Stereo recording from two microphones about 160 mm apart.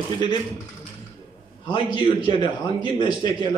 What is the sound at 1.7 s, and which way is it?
A man's voice, 30° left (ahead or behind).